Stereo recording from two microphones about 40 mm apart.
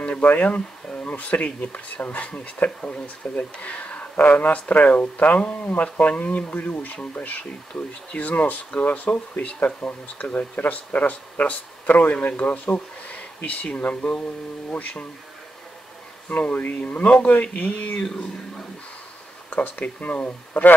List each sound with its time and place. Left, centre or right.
0.1 s speech: left
0.8 s speech: left
16.3 s speech: left
19.5 s speech: left